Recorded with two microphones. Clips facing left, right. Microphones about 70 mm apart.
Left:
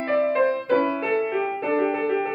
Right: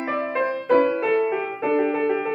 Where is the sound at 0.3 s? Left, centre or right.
Centre.